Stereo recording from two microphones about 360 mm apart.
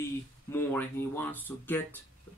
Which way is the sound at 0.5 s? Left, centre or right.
Centre.